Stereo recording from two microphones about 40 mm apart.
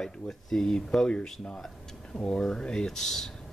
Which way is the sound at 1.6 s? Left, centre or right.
Centre.